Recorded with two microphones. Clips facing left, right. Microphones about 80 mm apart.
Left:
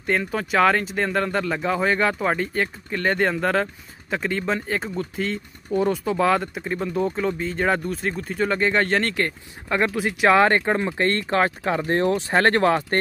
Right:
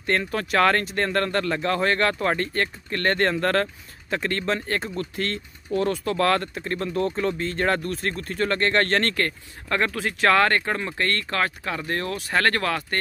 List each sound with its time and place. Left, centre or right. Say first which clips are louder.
0.0 s speech: left 1 dB; centre; by 12.8 s left